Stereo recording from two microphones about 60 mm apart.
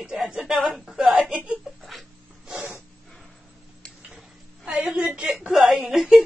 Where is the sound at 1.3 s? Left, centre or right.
Centre.